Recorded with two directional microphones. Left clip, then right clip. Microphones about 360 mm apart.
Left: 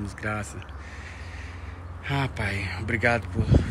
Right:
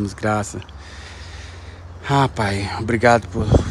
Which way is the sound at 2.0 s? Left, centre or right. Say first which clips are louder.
Right 11 dB; centre.